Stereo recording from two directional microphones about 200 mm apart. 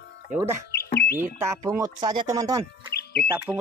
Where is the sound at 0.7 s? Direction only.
55° left (ahead or behind).